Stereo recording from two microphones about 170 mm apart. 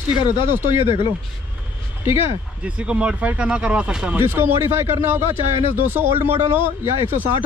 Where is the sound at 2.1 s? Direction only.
15° right (ahead or behind).